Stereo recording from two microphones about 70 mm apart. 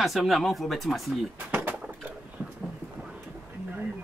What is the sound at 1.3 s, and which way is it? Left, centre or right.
Pigeon, right.